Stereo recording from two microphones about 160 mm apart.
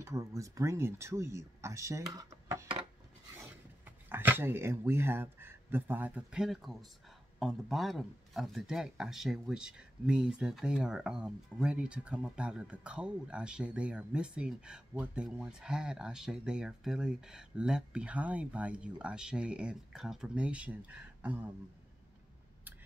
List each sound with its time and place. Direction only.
0.0 s speech: 20° right (ahead or behind)
4.1 s a man's voice: 15° right (ahead or behind)